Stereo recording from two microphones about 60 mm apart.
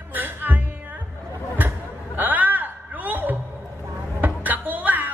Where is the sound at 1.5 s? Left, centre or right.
Right.